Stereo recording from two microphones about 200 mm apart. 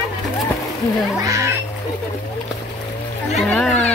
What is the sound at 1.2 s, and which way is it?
Speech, 15° right (ahead or behind).